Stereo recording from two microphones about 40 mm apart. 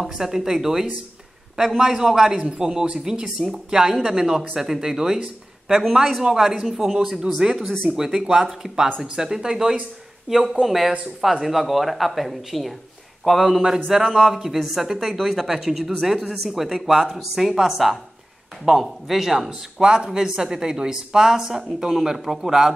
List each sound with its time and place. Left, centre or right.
0.0 s speech: centre
3.3 s speech: centre
3.7 s speech: centre
10.6 s speech: centre